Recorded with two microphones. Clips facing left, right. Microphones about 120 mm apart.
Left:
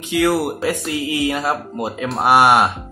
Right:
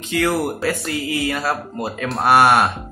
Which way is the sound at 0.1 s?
10° left (ahead or behind).